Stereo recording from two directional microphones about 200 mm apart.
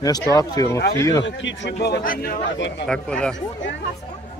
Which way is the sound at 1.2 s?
65° left (ahead or behind).